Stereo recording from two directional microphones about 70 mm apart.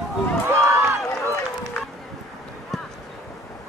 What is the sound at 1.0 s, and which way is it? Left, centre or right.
Run, left.